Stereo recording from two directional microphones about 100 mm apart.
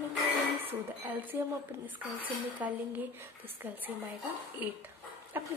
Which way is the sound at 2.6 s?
15° right (ahead or behind).